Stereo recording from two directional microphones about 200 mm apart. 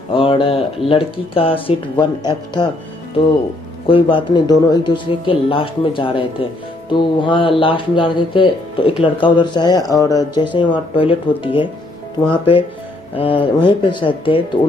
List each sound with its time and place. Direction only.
0.1 s speech: 25° left (ahead or behind)
3.8 s speech: 25° left (ahead or behind)